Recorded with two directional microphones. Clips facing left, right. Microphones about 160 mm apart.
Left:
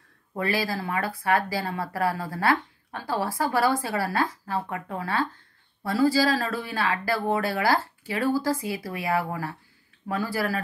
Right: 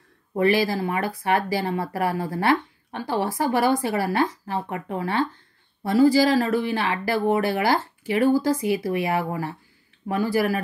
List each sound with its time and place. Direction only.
0.3 s speech: 20° right (ahead or behind)